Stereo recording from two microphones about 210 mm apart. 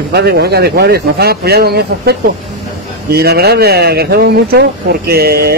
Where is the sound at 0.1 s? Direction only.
50° right (ahead or behind).